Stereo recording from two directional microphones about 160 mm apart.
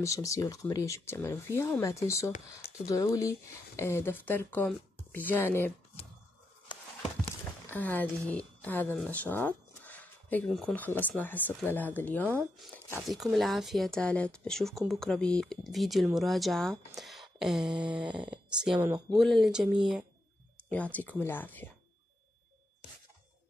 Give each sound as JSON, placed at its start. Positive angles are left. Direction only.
{"t": 0.0, "sound": "speech", "side_deg": 20}
{"t": 7.7, "sound": "speech", "side_deg": 10}
{"t": 9.8, "sound": "a sound", "side_deg": 10}
{"t": 10.5, "sound": "speech", "side_deg": 5}
{"t": 13.0, "sound": "speech", "side_deg": 0}
{"t": 16.9, "sound": "a sound", "side_deg": 0}
{"t": 18.1, "sound": "speech", "side_deg": -5}
{"t": 18.8, "sound": "speech", "side_deg": -20}
{"t": 19.0, "sound": "speech", "side_deg": 0}
{"t": 20.7, "sound": "speech", "side_deg": 10}